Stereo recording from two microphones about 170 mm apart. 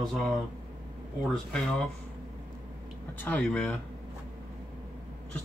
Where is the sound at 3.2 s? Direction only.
10° left (ahead or behind).